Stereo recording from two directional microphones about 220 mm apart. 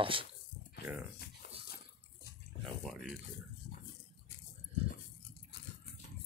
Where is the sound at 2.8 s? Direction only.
Centre (ahead or behind).